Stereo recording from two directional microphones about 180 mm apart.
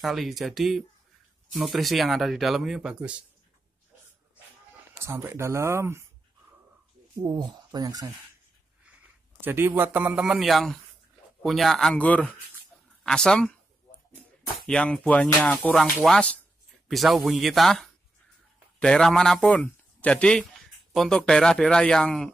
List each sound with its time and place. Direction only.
0.0 s speech: centre (ahead or behind)
5.0 s speech: 15° right (ahead or behind)
7.2 s speech: 25° right (ahead or behind)
9.4 s speech: 10° right (ahead or behind); by 13.5 s 5° left (ahead or behind)
14.7 s a man's voice: 5° left (ahead or behind)